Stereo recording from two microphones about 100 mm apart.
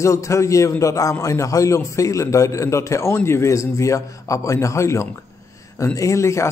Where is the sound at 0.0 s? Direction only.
30° left (ahead or behind).